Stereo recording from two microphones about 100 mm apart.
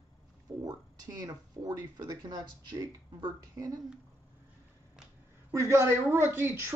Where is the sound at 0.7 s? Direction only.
35° right (ahead or behind).